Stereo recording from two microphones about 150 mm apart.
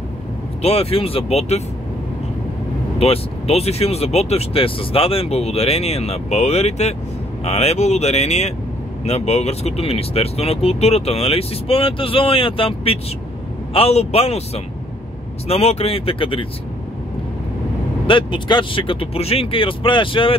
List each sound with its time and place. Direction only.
0.6 s speech: 40° left (ahead or behind)
3.0 s speech: 40° left (ahead or behind)
18.0 s speech: 35° left (ahead or behind)